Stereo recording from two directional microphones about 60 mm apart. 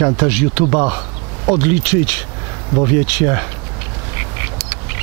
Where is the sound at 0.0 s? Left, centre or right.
Centre.